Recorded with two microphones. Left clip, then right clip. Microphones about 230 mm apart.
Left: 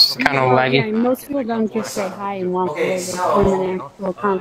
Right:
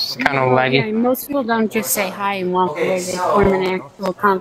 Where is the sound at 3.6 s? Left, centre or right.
Right.